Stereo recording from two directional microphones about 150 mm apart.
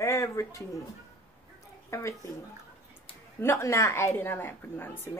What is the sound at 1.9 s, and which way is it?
Speech, 20° left (ahead or behind).